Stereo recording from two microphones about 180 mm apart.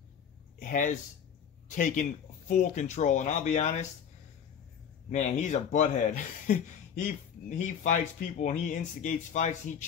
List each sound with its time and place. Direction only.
0.6 s speech: 45° left (ahead or behind)
5.1 s speech: 40° left (ahead or behind)